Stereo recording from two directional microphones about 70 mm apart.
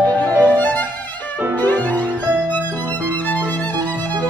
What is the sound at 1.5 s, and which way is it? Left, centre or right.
Violin, left.